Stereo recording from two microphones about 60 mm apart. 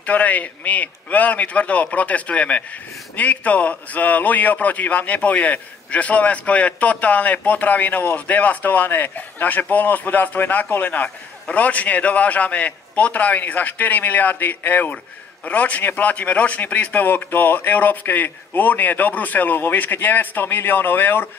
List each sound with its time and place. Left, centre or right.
0.0 s a man's voice: left